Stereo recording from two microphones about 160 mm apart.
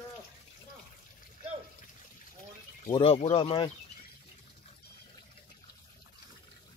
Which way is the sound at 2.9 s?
35° left (ahead or behind).